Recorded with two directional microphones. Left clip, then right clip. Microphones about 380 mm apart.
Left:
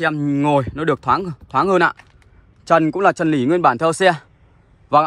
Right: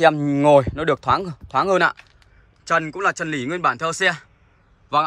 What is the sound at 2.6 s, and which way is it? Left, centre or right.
A man's voice, centre.